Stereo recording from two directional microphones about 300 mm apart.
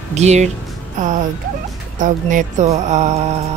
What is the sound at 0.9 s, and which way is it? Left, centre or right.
Music, right.